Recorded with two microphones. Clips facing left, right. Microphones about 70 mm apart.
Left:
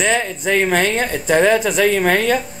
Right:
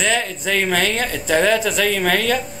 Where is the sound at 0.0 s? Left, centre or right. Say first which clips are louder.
Left 2 dB; centre.